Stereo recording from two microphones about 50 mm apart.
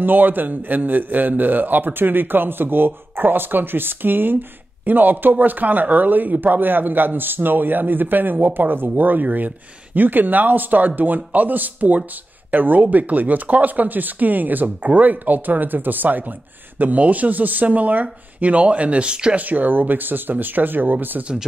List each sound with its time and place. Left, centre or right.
0.0 s a man's voice: right
19.3 s a man's voice: right